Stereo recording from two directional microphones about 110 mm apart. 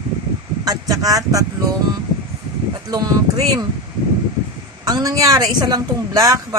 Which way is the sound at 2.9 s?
35° right (ahead or behind).